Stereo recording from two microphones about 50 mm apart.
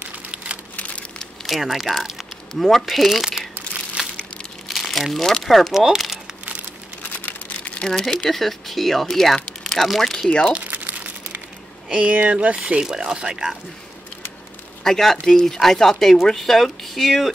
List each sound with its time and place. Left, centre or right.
1.2 s speech: centre
4.6 s speech: centre
7.0 s crumpling: left
7.8 s speech: centre
11.0 s crumpling: right
11.9 s speech: centre
12.8 s speech: centre
14.8 s speech: centre